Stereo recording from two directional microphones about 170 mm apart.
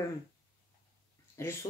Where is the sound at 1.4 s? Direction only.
15° left (ahead or behind).